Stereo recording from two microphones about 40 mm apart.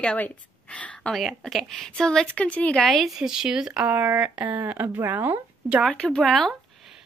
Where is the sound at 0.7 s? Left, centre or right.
Left.